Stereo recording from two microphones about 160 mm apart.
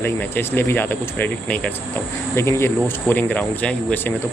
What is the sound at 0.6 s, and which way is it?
Speech, 15° left (ahead or behind).